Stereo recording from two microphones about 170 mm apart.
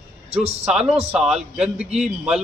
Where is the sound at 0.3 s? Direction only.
35° right (ahead or behind).